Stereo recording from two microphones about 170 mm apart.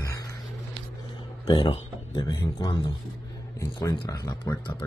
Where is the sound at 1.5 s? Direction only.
30° left (ahead or behind).